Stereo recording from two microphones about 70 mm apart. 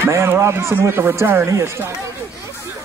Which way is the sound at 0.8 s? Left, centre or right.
Right.